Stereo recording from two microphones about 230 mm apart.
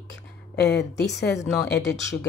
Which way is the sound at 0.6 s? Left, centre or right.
Left.